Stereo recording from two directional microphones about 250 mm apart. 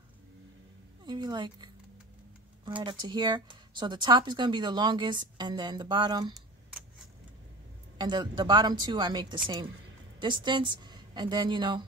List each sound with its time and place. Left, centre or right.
1.0 s speech: centre
8.0 s a woman's voice: centre